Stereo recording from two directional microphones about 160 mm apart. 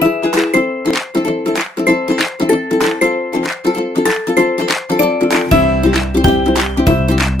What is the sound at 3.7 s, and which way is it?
Music, 40° left (ahead or behind).